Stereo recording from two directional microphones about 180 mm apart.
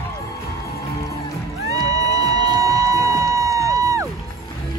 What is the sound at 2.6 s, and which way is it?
Music, 15° right (ahead or behind).